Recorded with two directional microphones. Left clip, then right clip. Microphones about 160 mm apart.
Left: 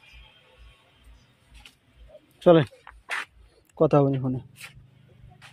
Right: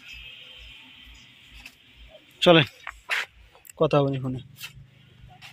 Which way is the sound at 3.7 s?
50° left (ahead or behind).